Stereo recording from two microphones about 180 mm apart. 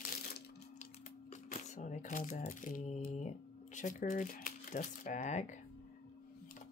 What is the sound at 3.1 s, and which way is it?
Speech, 40° left (ahead or behind).